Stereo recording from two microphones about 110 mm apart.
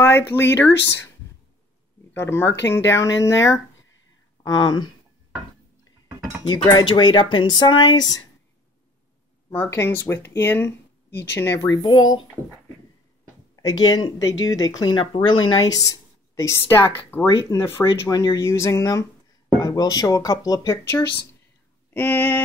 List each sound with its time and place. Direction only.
0.0 s speech: 20° left (ahead or behind)
2.1 s speech: 20° left (ahead or behind)
4.5 s speech: 40° left (ahead or behind)
6.7 s speech: 40° left (ahead or behind)
9.7 s speech: 25° left (ahead or behind); by 12.2 s 40° left (ahead or behind)
13.6 s speech: 35° left (ahead or behind); by 17.3 s 20° left (ahead or behind)
17.3 s speech: 35° left (ahead or behind)
17.6 s speech: 25° left (ahead or behind)
18.1 s speech: 35° left (ahead or behind)
21.9 s a sound: 15° left (ahead or behind)